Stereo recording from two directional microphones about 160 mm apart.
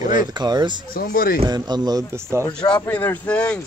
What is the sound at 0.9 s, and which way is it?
Speech, 65° left (ahead or behind).